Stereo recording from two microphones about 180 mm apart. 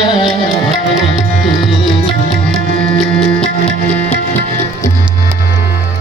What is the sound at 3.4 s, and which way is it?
Music, 5° left (ahead or behind).